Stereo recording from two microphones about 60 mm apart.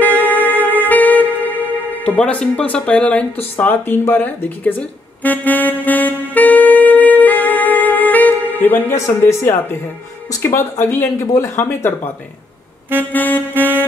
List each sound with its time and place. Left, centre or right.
0.3 s music: left
2.1 s speech: centre
3.3 s speech: left
5.2 s saxophone: left
9.2 s speech: left
11.1 s speech: left
13.1 s saxophone: left